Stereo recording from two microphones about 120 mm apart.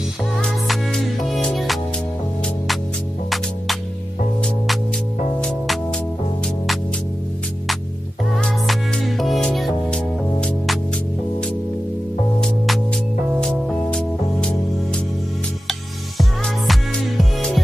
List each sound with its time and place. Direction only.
0.4 s music: 5° left (ahead or behind)
5.4 s music: 10° left (ahead or behind)
8.4 s music: 5° left (ahead or behind)
12.4 s music: centre (ahead or behind)
16.2 s music: centre (ahead or behind)